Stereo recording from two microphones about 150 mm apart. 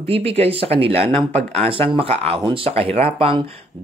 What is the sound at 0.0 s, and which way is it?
Speech, 40° right (ahead or behind).